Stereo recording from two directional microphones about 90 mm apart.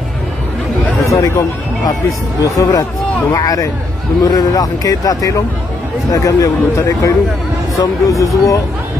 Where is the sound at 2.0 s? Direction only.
35° left (ahead or behind).